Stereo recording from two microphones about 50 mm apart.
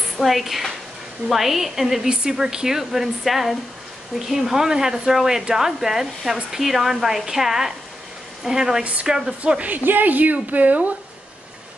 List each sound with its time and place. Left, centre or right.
0.2 s a woman's voice: centre
9.6 s a woman's voice: right